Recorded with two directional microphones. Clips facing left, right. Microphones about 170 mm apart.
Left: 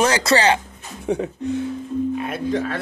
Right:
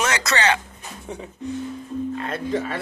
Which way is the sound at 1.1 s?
75° left (ahead or behind).